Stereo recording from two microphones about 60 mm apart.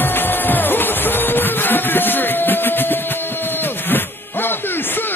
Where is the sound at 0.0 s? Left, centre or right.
Left.